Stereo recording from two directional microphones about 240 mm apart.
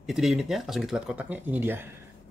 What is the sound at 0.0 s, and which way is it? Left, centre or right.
Speech, centre.